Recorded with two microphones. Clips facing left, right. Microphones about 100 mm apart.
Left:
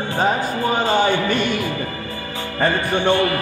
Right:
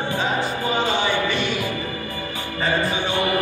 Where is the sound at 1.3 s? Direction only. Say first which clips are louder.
Left 4 dB; 50° left (ahead or behind).